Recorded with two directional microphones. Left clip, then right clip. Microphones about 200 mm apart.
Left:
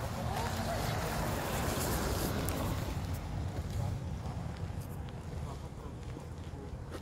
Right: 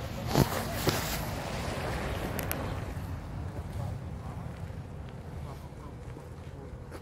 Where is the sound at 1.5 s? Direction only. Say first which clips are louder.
Even; 55° left (ahead or behind); by 2.7 s 70° left (ahead or behind).